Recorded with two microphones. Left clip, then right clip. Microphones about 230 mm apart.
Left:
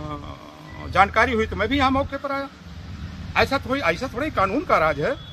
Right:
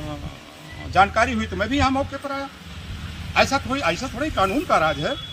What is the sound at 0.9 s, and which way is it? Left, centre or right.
Speech, left.